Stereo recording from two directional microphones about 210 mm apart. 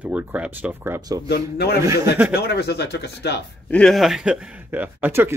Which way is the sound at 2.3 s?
50° left (ahead or behind).